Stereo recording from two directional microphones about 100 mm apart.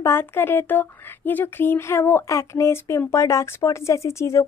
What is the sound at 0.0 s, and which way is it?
Speech, 25° left (ahead or behind).